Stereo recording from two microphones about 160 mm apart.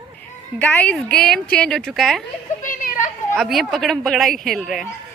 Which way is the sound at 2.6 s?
55° left (ahead or behind).